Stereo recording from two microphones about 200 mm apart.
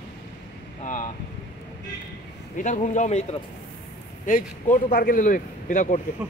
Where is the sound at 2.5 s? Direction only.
35° left (ahead or behind).